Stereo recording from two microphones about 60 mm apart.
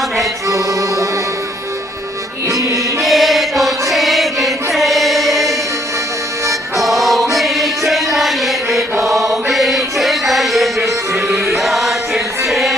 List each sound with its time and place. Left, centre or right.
0.5 s music: right
2.4 s music: right
3.0 s chant: centre
3.9 s music: centre
6.8 s music: centre
7.3 s chant: centre